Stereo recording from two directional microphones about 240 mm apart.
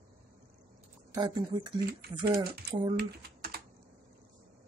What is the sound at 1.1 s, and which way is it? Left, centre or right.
Speech, centre.